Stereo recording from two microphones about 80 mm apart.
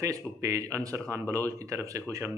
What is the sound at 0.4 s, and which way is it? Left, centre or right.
A man's voice, right.